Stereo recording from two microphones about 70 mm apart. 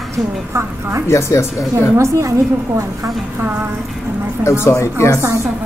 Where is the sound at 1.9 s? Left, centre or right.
Right.